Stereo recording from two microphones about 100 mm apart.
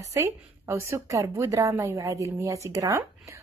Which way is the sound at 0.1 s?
30° right (ahead or behind).